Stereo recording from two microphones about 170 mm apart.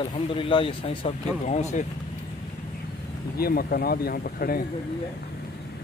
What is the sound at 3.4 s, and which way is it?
Speech, 60° left (ahead or behind).